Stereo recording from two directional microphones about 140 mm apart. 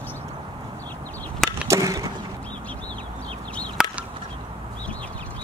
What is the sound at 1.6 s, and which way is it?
Skateboard, 25° right (ahead or behind).